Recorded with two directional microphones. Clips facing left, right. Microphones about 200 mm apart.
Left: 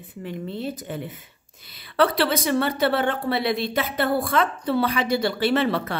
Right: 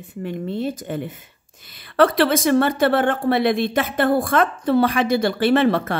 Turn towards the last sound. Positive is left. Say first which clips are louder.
# right 5 dB
turn(degrees=-50)  # may be behind; listen again after turning